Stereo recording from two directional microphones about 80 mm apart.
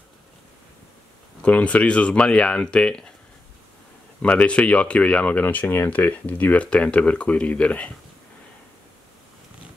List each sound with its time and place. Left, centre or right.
1.4 s speech: centre
4.2 s speech: centre